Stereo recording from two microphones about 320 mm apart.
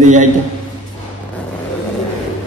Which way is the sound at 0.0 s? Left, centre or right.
Right.